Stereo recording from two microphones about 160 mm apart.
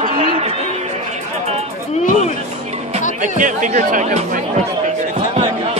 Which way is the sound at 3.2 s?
55° right (ahead or behind).